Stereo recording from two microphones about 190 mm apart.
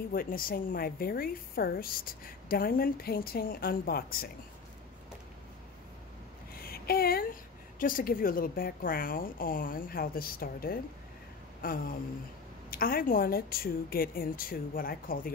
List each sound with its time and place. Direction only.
0.1 s a woman's voice: 50° left (ahead or behind)
6.6 s a sound: 50° left (ahead or behind)
7.8 s a woman's voice: 45° left (ahead or behind)